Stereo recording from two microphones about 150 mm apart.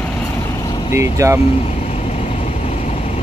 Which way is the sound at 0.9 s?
20° right (ahead or behind).